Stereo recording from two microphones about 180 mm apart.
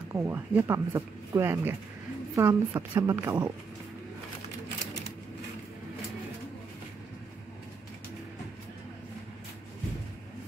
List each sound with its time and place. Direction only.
0.1 s a woman's voice: 15° right (ahead or behind)